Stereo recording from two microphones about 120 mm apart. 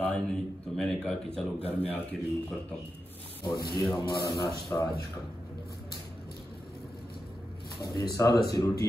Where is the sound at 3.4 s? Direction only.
30° left (ahead or behind).